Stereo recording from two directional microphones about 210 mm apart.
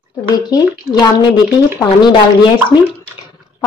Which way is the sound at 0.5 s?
20° left (ahead or behind).